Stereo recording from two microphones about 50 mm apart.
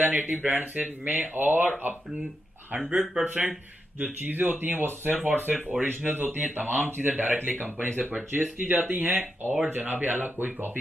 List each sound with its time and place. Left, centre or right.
0.0 s speech: right
2.8 s speech: centre
4.0 s speech: right